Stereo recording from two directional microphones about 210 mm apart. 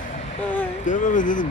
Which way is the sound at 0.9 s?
40° left (ahead or behind).